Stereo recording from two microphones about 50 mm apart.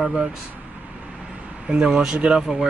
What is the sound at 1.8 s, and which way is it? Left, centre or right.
Speech, centre.